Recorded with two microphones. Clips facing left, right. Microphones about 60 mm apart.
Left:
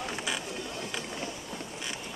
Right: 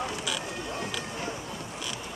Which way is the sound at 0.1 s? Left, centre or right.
Left.